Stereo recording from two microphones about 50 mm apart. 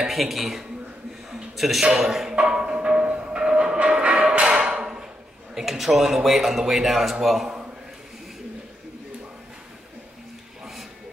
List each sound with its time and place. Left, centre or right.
0.0 s a man's voice: centre
2.3 s train: right
4.3 s music: right
4.7 s a sound: centre
5.5 s a man's voice: centre
10.6 s a sound: centre